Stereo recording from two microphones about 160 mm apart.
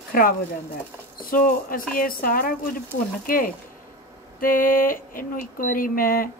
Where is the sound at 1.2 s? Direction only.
60° left (ahead or behind).